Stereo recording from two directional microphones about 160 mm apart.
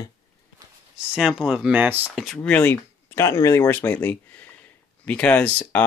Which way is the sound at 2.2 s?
5° left (ahead or behind).